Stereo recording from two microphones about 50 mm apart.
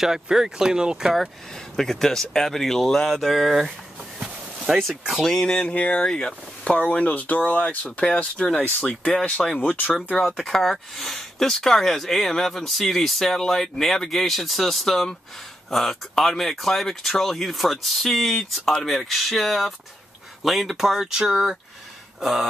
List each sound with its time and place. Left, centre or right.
0.0 s speech: centre
1.5 s speech: centre
4.2 s a sound: centre
5.3 s speech: centre
6.7 s speech: left
8.0 s speech: centre